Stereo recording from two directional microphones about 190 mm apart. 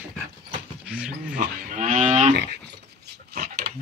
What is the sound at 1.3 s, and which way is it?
Livestock, 45° right (ahead or behind).